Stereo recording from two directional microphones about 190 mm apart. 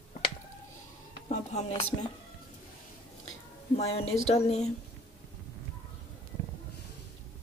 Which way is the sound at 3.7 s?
30° left (ahead or behind).